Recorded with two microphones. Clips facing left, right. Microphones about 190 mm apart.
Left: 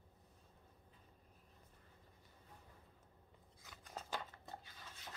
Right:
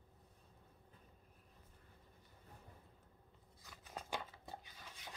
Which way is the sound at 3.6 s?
5° right (ahead or behind).